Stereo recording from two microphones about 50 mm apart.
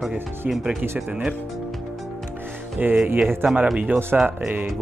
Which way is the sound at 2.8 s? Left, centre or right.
Right.